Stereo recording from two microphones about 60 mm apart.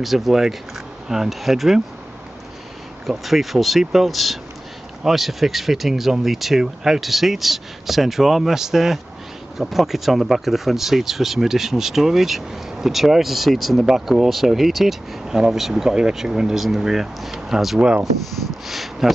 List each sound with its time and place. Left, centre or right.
0.0 s speech: centre
3.1 s speech: centre
17.7 s speech: right
18.7 s speech: centre